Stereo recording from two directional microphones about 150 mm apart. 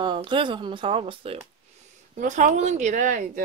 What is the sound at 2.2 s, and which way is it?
A woman's voice, 55° right (ahead or behind).